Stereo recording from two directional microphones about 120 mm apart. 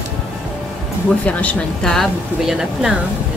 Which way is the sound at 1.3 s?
10° left (ahead or behind).